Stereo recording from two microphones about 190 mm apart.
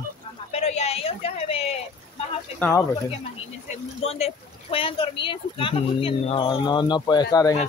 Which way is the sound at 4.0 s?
30° left (ahead or behind).